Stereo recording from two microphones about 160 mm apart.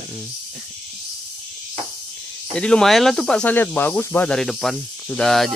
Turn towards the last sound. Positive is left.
turn(degrees=0)  # may be behind; listen again after turning